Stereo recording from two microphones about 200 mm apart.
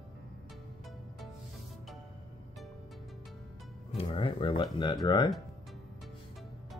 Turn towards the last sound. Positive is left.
turn(degrees=20)  # may be behind; listen again after turning